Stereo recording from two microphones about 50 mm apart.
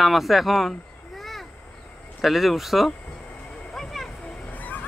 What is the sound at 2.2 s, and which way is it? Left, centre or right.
Speech, centre.